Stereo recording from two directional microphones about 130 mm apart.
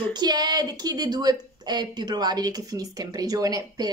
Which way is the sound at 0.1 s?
30° right (ahead or behind).